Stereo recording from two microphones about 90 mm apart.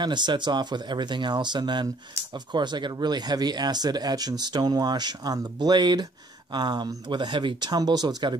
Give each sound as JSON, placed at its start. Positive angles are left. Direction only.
{"t": 0.0, "sound": "speech", "side_deg": -55}
{"t": 7.7, "sound": "speech", "side_deg": -45}